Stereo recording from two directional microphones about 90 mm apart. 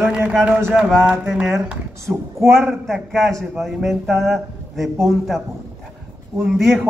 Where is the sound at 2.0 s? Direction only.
30° right (ahead or behind).